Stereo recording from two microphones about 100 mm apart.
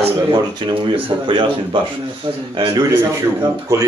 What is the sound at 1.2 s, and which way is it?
Speech, 60° right (ahead or behind).